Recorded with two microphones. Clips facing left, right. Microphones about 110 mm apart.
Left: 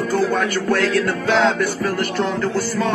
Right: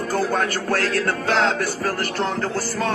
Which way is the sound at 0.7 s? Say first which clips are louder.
Left 3 dB; 40° right (ahead or behind).